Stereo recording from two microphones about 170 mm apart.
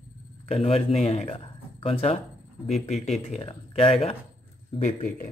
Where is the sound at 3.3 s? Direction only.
35° left (ahead or behind).